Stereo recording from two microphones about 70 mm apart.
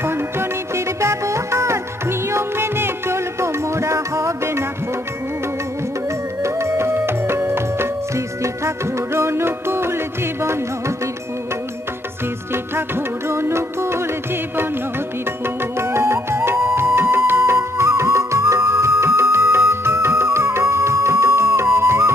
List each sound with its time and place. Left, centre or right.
0.0 s music: right
6.4 s music: right
13.3 s music: right
15.8 s music: right